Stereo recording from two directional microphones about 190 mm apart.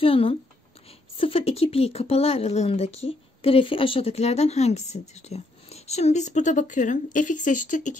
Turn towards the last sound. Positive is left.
turn(degrees=40)  # may be behind; listen again after turning